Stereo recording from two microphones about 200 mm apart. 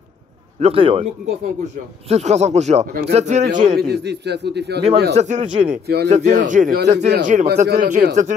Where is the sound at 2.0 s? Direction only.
35° right (ahead or behind).